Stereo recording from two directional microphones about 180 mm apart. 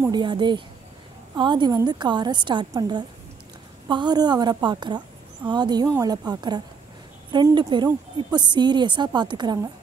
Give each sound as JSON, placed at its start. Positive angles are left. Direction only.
{"t": 0.0, "sound": "a woman's voice", "side_deg": -25}